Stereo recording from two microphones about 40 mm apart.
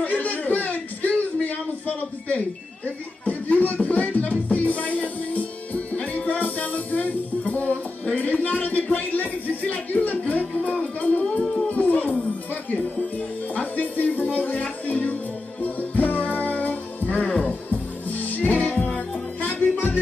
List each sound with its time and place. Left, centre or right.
0.0 s a sound: left
3.3 s music: left
9.2 s music: left
10.1 s music: left
13.6 s speech: left
15.6 s music: left